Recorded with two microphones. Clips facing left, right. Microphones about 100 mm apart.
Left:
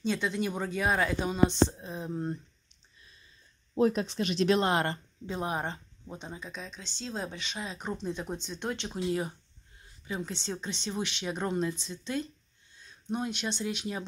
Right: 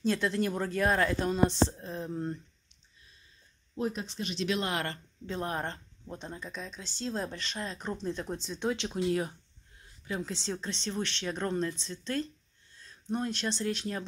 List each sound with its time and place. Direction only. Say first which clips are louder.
0.0 s speech: right 1 dB; centre (ahead or behind)
3.7 s speech: left 7 dB; 90° left
4.0 s speech: left 6 dB; 70° left (ahead or behind)
4.4 s speech: left 6 dB; 35° left (ahead or behind)
5.3 s speech: left 1 dB; 10° left (ahead or behind)